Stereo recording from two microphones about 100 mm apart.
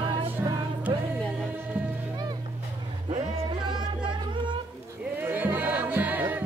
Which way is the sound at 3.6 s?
50° right (ahead or behind).